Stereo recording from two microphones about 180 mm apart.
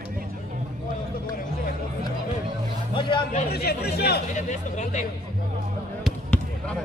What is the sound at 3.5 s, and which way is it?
Speech, 60° left (ahead or behind).